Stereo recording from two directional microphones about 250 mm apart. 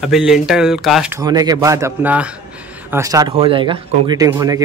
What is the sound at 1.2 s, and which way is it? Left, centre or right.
A man's voice, centre.